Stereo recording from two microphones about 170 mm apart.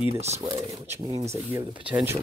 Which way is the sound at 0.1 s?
40° right (ahead or behind).